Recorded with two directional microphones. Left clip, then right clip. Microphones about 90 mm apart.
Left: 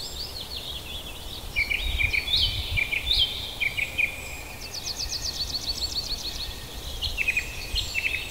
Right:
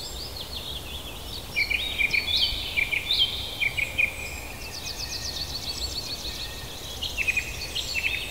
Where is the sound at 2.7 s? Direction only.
40° left (ahead or behind).